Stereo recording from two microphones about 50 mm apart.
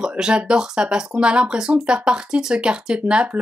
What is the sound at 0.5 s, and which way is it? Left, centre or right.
A woman's voice, centre.